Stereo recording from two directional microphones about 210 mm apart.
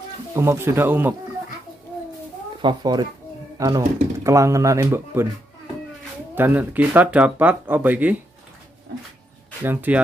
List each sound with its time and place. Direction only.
0.3 s speech: 10° right (ahead or behind)
2.6 s speech: 20° right (ahead or behind)
6.3 s speech: 10° right (ahead or behind)
9.6 s speech: 10° right (ahead or behind)